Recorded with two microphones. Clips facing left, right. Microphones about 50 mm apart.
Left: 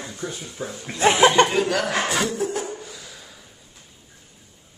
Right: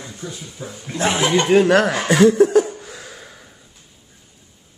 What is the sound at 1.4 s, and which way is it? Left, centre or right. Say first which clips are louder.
Speech: right 8 dB; right.